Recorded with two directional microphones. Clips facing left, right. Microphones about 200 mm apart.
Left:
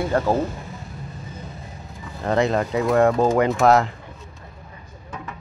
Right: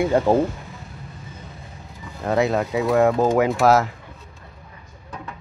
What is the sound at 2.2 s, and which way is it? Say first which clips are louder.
Speech: even; 5° right (ahead or behind).